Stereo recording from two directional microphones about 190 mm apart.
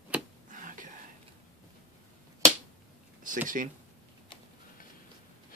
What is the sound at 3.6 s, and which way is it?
Speech, 45° right (ahead or behind).